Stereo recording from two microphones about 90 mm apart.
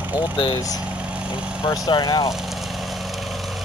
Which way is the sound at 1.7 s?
50° left (ahead or behind).